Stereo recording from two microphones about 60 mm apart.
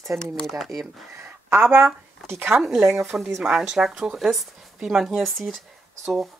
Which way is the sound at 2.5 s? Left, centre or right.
Centre.